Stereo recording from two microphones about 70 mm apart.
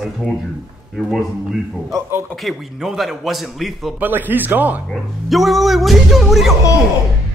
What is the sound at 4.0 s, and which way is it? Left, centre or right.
Speech, right.